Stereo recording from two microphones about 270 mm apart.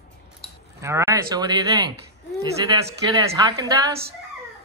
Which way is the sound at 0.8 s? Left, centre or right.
Centre.